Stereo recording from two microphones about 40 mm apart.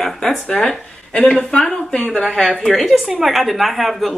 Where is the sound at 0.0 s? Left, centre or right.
Centre.